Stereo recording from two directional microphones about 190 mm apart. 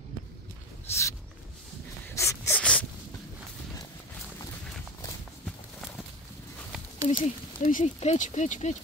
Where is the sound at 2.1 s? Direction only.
15° left (ahead or behind).